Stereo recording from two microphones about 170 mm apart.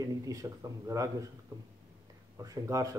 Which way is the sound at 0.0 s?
20° right (ahead or behind).